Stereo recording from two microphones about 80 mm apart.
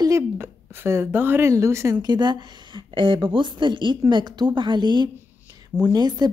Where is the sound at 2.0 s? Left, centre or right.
Right.